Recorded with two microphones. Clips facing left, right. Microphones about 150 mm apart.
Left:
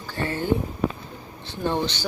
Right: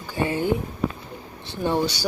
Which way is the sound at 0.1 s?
15° right (ahead or behind).